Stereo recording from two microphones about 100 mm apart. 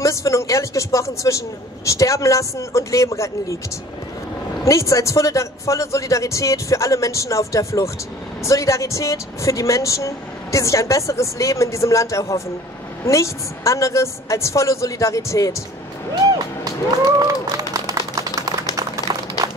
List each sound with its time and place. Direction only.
0.0 s speech: 30° left (ahead or behind)
4.6 s speech: 30° left (ahead or behind)
17.2 s clapping: 35° right (ahead or behind)
18.8 s a sound: 40° right (ahead or behind)